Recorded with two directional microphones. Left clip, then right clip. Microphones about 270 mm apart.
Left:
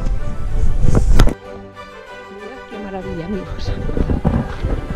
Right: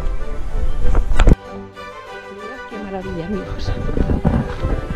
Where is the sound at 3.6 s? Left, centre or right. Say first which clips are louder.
Even; centre.